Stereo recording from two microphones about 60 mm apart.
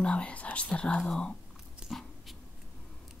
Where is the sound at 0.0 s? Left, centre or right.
Left.